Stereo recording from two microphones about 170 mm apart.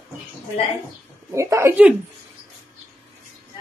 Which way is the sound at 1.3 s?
15° right (ahead or behind).